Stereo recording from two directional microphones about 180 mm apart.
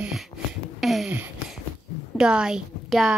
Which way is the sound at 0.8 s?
Centre (ahead or behind).